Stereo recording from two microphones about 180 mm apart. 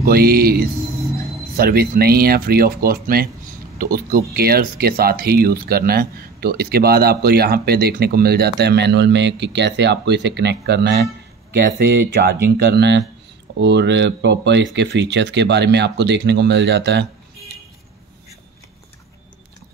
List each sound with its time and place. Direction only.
0.0 s speech: 55° right (ahead or behind); by 17.1 s 70° right (ahead or behind)